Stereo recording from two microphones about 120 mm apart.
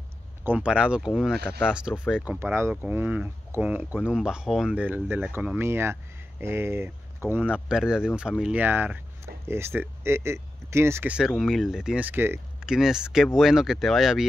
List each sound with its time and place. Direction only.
0.4 s speech: 10° right (ahead or behind)
2.4 s speech: 20° right (ahead or behind)
11.1 s speech: 5° right (ahead or behind)
12.6 s speech: 5° right (ahead or behind)